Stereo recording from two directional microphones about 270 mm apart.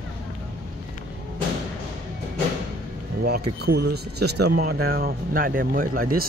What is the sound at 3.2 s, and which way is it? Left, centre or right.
Speech, right.